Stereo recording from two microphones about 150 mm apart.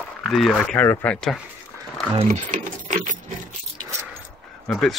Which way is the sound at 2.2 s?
55° right (ahead or behind).